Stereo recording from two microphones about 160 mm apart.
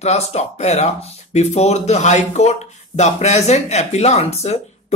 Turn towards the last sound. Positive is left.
turn(degrees=40)  # may be behind; listen again after turning